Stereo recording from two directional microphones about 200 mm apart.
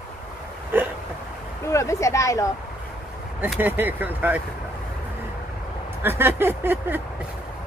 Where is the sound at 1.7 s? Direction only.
15° left (ahead or behind).